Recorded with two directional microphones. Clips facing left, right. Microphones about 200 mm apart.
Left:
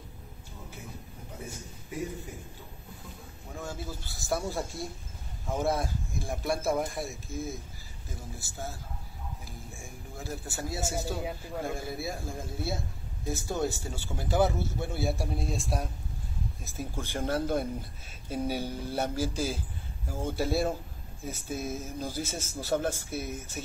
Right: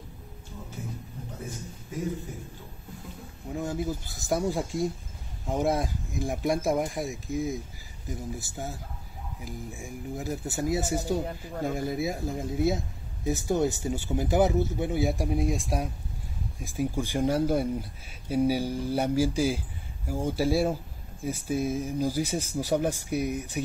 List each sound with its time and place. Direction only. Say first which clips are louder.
3.5 s speech: right 8 dB; 20° right (ahead or behind)